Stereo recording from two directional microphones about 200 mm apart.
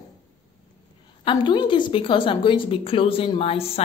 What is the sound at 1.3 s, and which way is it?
A woman's voice, 25° left (ahead or behind).